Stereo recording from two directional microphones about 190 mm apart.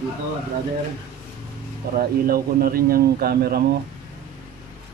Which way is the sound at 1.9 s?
50° right (ahead or behind).